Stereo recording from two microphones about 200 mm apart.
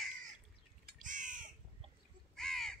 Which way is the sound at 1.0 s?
40° right (ahead or behind).